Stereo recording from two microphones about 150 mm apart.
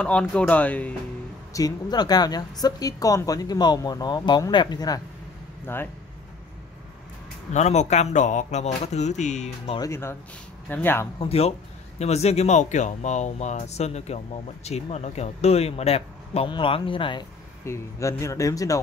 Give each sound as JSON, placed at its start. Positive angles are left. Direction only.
{"t": 0.0, "sound": "speech", "side_deg": 5}
{"t": 1.5, "sound": "speech", "side_deg": 25}
{"t": 7.5, "sound": "speech", "side_deg": 50}
{"t": 9.8, "sound": "speech", "side_deg": 20}
{"t": 11.1, "sound": "speech", "side_deg": 40}
{"t": 17.6, "sound": "speech", "side_deg": 20}